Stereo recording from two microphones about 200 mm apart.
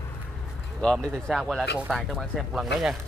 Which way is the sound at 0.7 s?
5° left (ahead or behind).